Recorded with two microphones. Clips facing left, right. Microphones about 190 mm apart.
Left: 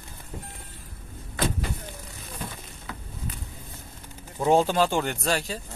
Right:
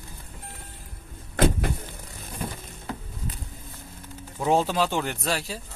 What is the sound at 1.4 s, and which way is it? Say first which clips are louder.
Vehicle: right 5 dB; 55° right (ahead or behind).